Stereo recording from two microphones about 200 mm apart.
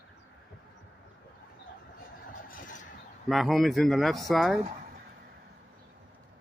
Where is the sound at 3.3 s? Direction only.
Centre (ahead or behind).